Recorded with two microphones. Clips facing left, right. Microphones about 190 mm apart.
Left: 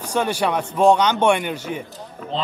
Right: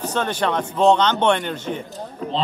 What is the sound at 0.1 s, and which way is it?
A man's voice, 10° left (ahead or behind).